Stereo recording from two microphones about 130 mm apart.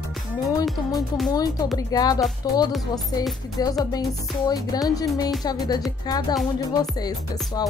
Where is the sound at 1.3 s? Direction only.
30° left (ahead or behind).